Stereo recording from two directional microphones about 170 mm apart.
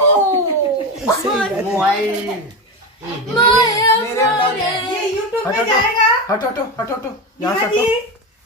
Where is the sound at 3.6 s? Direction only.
15° left (ahead or behind).